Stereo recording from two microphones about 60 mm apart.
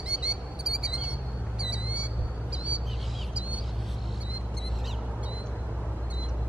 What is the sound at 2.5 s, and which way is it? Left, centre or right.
Bird, centre.